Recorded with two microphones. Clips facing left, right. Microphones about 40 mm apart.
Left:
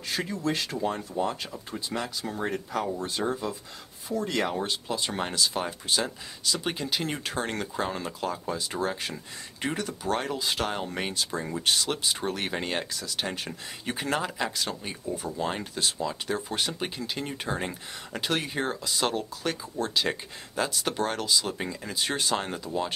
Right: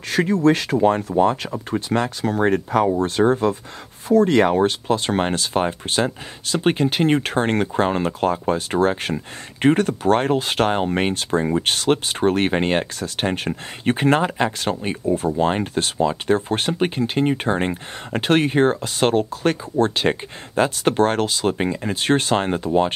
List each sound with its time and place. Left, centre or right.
0.1 s speech: right